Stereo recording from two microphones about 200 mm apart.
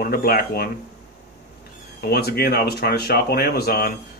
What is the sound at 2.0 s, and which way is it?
Speech, 50° left (ahead or behind).